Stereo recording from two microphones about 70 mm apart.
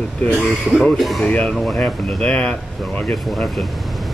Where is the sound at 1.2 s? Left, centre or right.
Centre.